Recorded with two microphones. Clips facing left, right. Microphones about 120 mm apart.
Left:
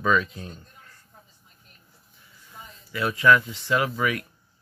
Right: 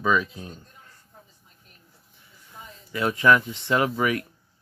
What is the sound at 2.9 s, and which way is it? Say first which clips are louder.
Speech: even; 25° right (ahead or behind).